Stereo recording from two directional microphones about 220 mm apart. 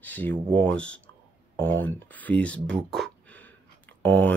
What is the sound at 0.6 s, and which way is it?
Speech, 5° left (ahead or behind).